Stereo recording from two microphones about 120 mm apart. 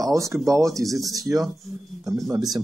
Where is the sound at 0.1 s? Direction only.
25° right (ahead or behind).